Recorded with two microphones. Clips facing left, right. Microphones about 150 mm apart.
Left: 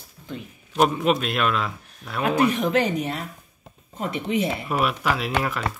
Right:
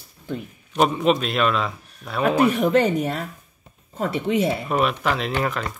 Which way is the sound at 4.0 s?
35° right (ahead or behind).